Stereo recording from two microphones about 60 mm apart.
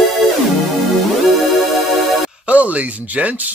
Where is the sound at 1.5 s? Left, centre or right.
Centre.